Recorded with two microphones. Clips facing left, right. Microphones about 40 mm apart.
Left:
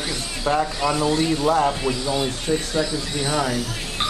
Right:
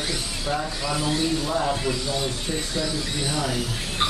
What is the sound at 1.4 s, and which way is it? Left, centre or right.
Speech, left.